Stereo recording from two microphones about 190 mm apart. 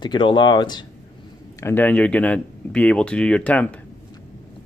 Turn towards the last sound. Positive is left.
turn(degrees=5)  # may be behind; listen again after turning